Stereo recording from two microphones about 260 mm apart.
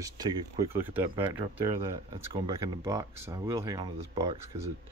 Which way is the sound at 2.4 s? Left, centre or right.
Centre.